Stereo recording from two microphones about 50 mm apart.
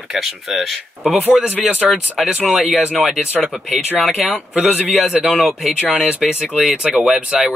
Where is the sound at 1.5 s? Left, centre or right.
Right.